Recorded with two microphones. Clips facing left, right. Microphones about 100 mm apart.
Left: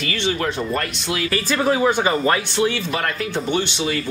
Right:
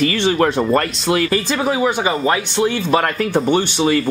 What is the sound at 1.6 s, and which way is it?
Speech, 15° right (ahead or behind).